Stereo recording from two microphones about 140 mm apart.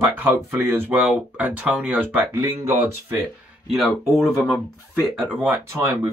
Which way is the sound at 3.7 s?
Centre (ahead or behind).